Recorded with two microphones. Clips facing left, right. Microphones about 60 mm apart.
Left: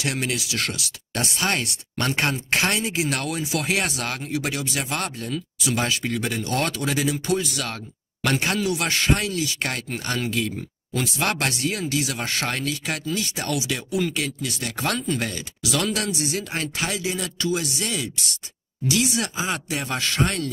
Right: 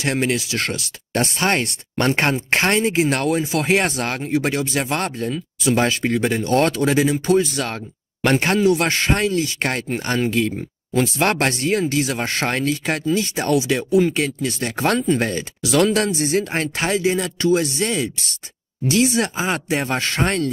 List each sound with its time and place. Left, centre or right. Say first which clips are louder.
0.0 s speech: right 6 dB; right